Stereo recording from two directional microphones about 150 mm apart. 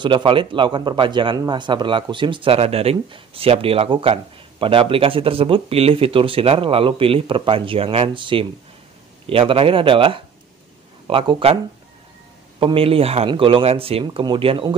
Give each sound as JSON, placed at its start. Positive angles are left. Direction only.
{"t": 0.0, "sound": "a man's voice", "side_deg": -35}